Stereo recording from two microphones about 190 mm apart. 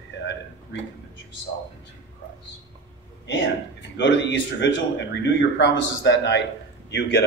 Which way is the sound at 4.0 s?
70° left (ahead or behind).